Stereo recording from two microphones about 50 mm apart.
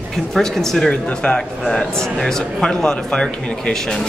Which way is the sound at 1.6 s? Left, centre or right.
Centre.